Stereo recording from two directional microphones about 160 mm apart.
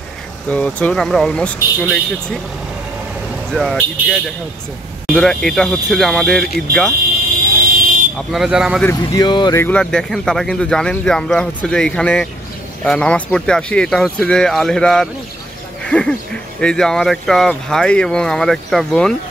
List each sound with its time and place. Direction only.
0.5 s speech: 10° left (ahead or behind)
3.5 s speech: centre (ahead or behind)
7.5 s vehicle: 65° right (ahead or behind)
8.3 s speech: 5° right (ahead or behind)
8.8 s speech: 25° left (ahead or behind)
9.6 s speech: 10° left (ahead or behind)